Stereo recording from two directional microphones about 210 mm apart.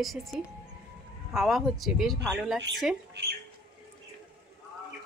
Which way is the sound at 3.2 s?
55° right (ahead or behind).